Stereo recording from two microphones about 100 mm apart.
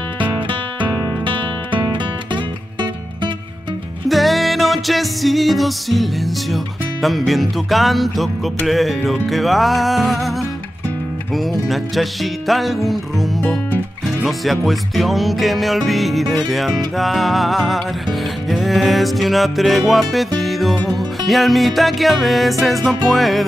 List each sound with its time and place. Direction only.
1.2 s music: 55° right (ahead or behind)
4.1 s music: centre (ahead or behind)
11.3 s music: centre (ahead or behind)